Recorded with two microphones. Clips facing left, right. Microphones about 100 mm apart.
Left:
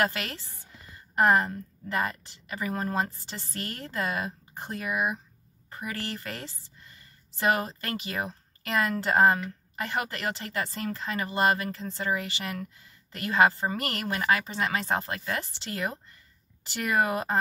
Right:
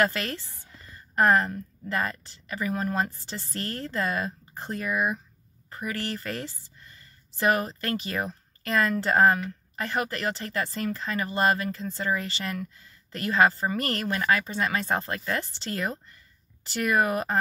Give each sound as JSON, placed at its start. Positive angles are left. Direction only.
{"t": 0.0, "sound": "speech", "side_deg": 20}
{"t": 5.8, "sound": "speech", "side_deg": 20}